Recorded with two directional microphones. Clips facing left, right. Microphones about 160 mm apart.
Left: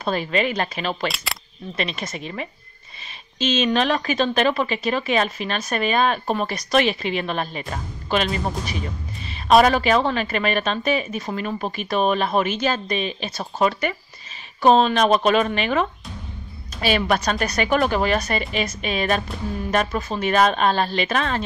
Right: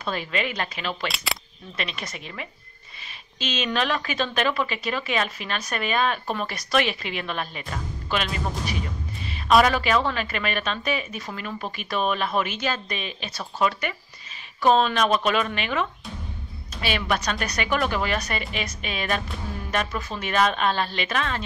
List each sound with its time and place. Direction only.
0.0 s a woman's voice: 35° left (ahead or behind)
1.0 s speech: centre (ahead or behind)
1.8 s a woman's voice: 30° left (ahead or behind)
6.7 s a woman's voice: 30° left (ahead or behind)
9.3 s a woman's voice: 30° left (ahead or behind)